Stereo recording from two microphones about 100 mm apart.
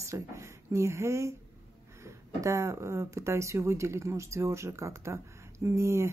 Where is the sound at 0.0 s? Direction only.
30° right (ahead or behind).